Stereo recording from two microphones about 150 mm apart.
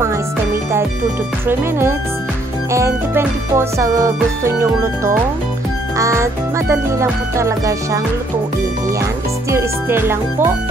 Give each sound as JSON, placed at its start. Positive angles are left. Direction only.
{"t": 1.5, "sound": "speech", "side_deg": -15}
{"t": 2.7, "sound": "music", "side_deg": -20}
{"t": 9.5, "sound": "speech", "side_deg": -15}